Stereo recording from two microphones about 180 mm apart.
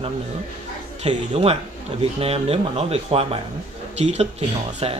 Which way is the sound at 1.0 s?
35° right (ahead or behind).